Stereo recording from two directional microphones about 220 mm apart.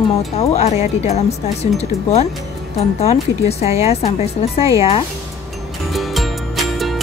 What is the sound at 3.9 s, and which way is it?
Speech, 30° left (ahead or behind).